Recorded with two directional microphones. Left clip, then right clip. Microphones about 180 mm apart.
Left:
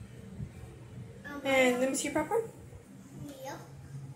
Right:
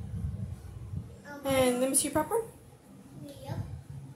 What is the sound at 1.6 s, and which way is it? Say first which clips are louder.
Speech: even; 20° right (ahead or behind).